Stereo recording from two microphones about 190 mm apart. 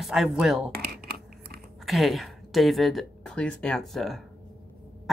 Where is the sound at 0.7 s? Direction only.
55° right (ahead or behind).